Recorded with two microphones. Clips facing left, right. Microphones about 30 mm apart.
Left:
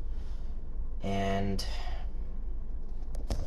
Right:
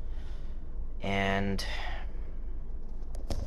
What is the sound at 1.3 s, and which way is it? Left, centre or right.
Speech, right.